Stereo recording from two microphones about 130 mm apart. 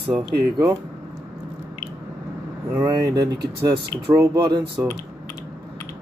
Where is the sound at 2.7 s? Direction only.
25° right (ahead or behind).